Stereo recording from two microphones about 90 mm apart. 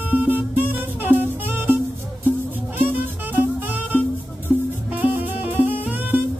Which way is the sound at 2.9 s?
20° right (ahead or behind).